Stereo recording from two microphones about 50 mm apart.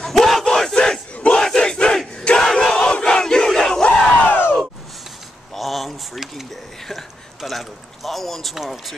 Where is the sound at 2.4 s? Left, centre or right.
Centre.